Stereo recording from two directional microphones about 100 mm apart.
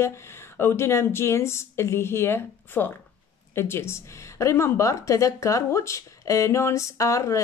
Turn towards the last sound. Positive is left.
turn(degrees=30)  # may be behind; listen again after turning